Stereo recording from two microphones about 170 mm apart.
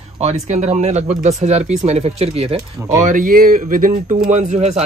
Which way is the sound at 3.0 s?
55° right (ahead or behind).